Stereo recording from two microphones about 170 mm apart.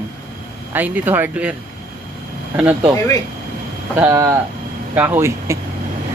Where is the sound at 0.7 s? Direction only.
10° right (ahead or behind).